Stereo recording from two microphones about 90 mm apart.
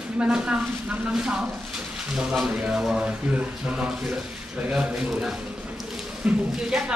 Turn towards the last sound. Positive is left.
turn(degrees=-5)  # may be behind; listen again after turning